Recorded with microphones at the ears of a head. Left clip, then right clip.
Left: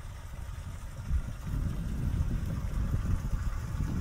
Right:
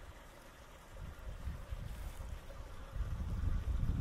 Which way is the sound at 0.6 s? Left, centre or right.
Left.